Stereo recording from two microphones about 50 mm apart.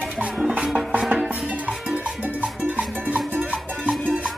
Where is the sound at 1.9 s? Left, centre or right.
Right.